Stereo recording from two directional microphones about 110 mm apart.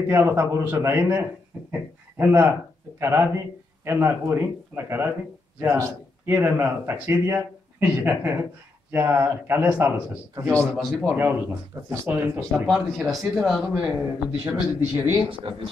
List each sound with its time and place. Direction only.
0.1 s a man's voice: 25° right (ahead or behind)
10.3 s speech: 25° right (ahead or behind)
10.8 s speech: centre (ahead or behind)
11.1 s speech: 15° right (ahead or behind)
12.6 s speech: centre (ahead or behind)
15.2 s speech: 50° right (ahead or behind)